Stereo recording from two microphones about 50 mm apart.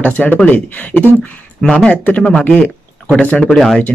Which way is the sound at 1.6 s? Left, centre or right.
Centre.